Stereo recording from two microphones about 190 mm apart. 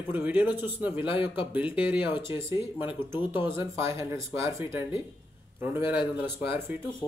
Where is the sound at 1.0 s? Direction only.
25° left (ahead or behind).